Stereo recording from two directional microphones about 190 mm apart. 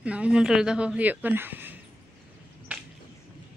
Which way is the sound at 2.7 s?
5° right (ahead or behind).